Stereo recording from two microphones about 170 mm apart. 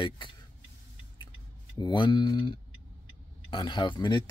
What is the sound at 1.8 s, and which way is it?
Speech, 25° left (ahead or behind).